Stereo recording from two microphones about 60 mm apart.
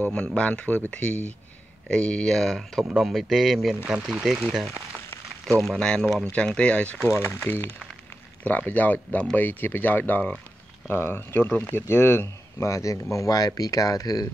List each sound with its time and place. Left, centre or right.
0.1 s speech: centre
5.6 s speech: centre
7.1 s speech: left
10.9 s speech: left
12.6 s speech: left